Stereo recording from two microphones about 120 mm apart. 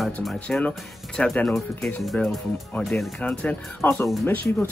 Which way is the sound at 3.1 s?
10° left (ahead or behind).